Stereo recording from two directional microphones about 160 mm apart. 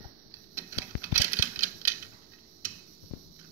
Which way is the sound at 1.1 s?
55° right (ahead or behind).